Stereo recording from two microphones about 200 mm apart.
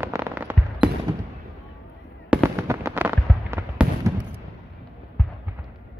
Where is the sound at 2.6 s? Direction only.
15° right (ahead or behind).